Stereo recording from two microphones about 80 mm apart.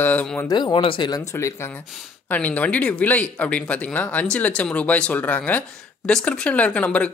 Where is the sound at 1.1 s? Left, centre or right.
Left.